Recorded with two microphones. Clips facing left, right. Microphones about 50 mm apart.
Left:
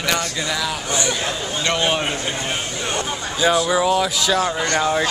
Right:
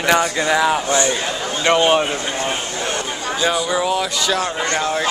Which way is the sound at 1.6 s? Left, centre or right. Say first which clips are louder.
Right 6 dB; centre.